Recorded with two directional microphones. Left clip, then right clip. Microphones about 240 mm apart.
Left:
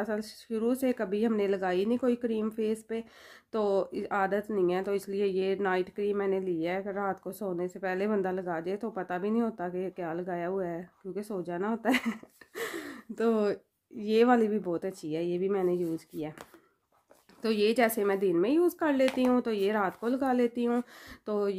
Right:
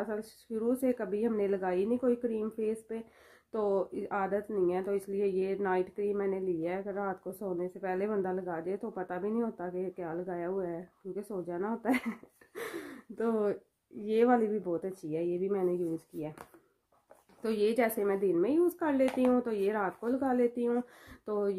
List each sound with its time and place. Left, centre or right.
0.0 s speech: left
17.4 s speech: left